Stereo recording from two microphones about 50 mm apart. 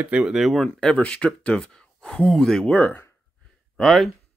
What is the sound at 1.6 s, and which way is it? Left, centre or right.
Speech, centre.